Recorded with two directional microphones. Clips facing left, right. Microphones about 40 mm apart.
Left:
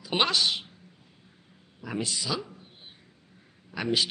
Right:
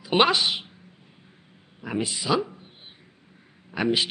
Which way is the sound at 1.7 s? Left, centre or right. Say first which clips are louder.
Right 3 dB; right.